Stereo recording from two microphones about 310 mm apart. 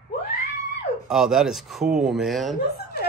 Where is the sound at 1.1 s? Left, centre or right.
Centre.